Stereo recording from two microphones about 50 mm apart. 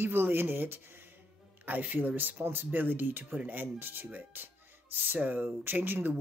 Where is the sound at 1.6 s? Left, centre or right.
Right.